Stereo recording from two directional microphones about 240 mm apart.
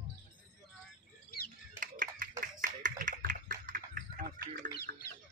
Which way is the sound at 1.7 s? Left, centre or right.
Right.